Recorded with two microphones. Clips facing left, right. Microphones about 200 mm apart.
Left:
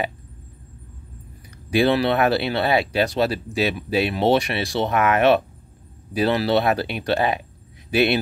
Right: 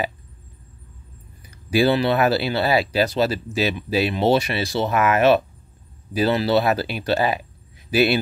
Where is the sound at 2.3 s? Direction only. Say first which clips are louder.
Even; centre (ahead or behind).